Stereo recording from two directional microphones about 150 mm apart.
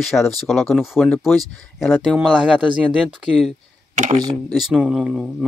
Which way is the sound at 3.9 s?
55° right (ahead or behind).